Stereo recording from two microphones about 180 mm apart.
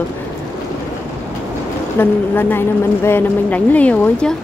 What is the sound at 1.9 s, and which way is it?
A woman's voice, 10° left (ahead or behind).